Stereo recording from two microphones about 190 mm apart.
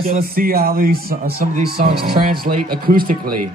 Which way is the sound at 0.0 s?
50° right (ahead or behind).